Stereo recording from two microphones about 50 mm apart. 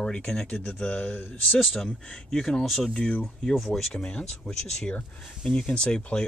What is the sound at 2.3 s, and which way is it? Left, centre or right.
Speech, centre.